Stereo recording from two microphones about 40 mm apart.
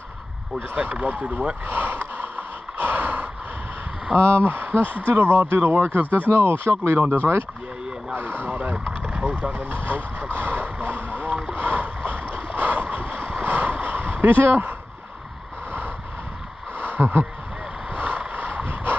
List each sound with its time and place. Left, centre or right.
0.7 s speech: right
1.7 s a sound: right
4.2 s speech: right
6.3 s speech: right
8.1 s vehicle: right
9.0 s vehicle: right
9.5 s speech: right
10.3 s boat: right
13.4 s a sound: right
17.0 s speech: right
17.9 s vehicle: right